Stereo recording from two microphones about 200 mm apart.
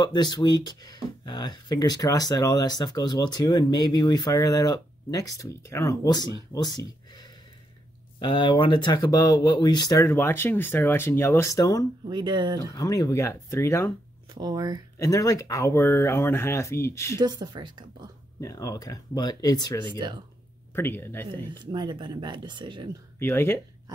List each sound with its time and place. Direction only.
0.0 s speech: 20° left (ahead or behind)
12.0 s speech: 20° right (ahead or behind)
12.7 s speech: 15° left (ahead or behind)
14.3 s speech: 20° right (ahead or behind)
15.0 s speech: 15° left (ahead or behind)
17.2 s speech: 20° right (ahead or behind)
18.4 s speech: 15° left (ahead or behind)
19.8 s speech: 25° right (ahead or behind)
20.7 s speech: 10° left (ahead or behind)
21.5 s speech: 20° right (ahead or behind)
23.1 s speech: 10° left (ahead or behind)